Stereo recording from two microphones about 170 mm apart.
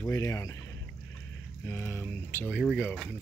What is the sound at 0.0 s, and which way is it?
Speech, 20° left (ahead or behind).